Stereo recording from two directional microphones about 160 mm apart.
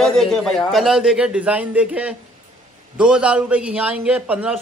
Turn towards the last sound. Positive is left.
turn(degrees=-10)  # may be behind; listen again after turning